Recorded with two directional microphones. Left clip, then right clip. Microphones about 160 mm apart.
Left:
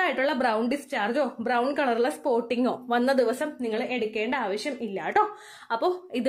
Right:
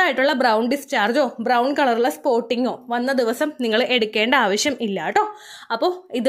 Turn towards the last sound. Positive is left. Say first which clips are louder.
# right 5 dB
turn(degrees=-30)  # may be behind; listen again after turning